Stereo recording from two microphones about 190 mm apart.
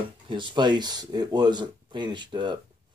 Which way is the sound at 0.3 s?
25° right (ahead or behind).